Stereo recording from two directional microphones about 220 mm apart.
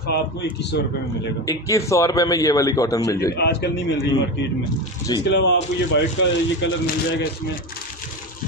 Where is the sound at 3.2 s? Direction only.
45° left (ahead or behind).